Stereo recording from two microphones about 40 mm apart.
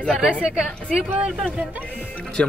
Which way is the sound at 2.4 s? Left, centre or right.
Left.